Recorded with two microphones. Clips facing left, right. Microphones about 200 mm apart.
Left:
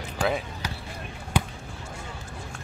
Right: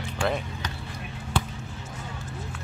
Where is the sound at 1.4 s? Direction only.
15° left (ahead or behind).